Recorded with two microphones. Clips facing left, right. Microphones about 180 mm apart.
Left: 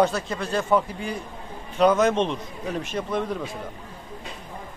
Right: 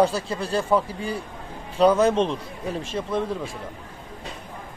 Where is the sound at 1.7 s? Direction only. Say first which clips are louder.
Right 1 dB; 30° right (ahead or behind).